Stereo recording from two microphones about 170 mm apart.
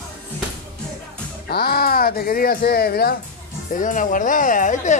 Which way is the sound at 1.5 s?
65° left (ahead or behind).